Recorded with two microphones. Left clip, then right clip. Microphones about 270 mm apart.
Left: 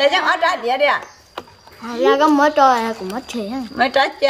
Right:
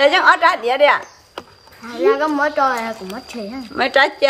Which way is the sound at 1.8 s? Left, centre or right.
Left.